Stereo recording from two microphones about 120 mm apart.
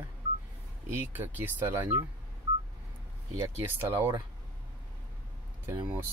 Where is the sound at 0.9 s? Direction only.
15° right (ahead or behind).